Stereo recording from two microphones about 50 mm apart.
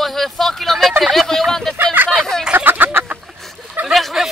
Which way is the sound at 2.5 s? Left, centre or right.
Right.